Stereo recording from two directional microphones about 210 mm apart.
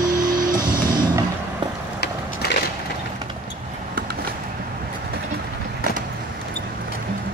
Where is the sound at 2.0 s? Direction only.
55° left (ahead or behind).